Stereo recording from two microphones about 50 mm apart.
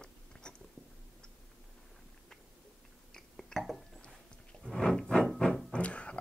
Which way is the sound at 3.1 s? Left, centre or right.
Centre.